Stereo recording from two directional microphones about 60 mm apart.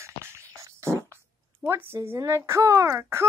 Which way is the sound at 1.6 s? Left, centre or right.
Right.